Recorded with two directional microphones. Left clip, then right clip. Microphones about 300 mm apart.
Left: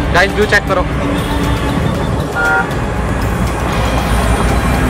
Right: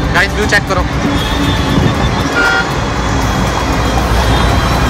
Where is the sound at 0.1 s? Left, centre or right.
Centre.